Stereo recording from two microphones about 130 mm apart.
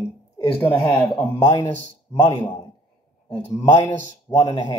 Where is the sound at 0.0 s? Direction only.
20° left (ahead or behind).